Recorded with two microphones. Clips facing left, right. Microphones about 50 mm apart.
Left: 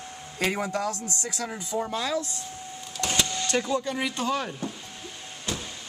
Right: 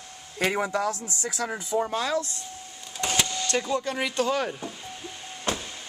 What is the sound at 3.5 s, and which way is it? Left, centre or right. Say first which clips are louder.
Speech: even; centre.